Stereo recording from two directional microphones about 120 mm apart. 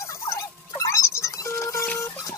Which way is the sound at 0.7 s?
25° left (ahead or behind).